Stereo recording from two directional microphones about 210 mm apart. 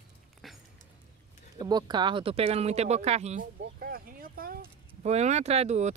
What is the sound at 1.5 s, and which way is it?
Speech, 20° right (ahead or behind).